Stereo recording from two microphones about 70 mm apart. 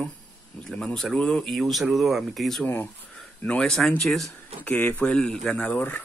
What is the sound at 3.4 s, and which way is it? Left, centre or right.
Speech, centre.